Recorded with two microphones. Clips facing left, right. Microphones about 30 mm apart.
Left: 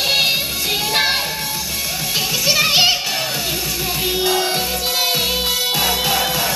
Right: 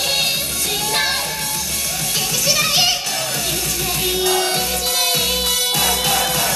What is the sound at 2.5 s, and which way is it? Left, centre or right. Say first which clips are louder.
Music: left 3 dB; centre.